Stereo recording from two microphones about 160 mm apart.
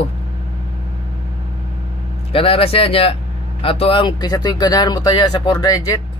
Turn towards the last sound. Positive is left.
turn(degrees=20)  # may be behind; listen again after turning